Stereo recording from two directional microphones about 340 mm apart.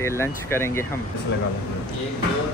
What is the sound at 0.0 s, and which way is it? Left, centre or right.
Speech, centre.